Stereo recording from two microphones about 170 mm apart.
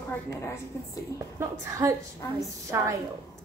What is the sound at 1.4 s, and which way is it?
Speech, 20° right (ahead or behind).